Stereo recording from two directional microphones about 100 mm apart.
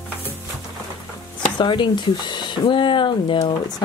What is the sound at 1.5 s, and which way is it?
Speech, 50° left (ahead or behind).